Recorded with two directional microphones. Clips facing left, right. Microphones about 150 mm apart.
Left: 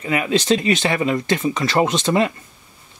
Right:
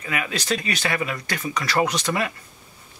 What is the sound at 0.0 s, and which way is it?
Speech, 25° left (ahead or behind).